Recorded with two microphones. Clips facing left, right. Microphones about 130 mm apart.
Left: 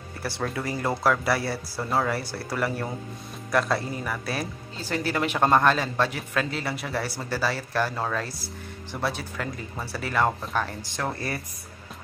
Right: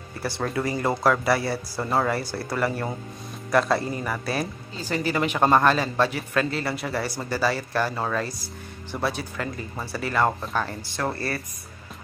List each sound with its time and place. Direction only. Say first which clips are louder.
0.2 s a man's voice: right 3 dB; centre (ahead or behind)
11.1 s speech: right 2 dB; 15° left (ahead or behind)